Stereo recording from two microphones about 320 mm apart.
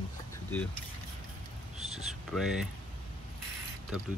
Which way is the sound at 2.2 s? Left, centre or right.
Centre.